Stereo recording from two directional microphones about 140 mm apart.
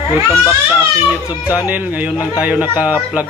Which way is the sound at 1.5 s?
10° right (ahead or behind).